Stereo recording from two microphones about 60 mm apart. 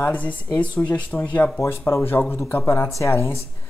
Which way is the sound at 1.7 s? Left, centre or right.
Left.